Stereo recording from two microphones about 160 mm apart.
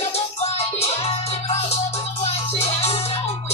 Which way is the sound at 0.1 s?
40° left (ahead or behind).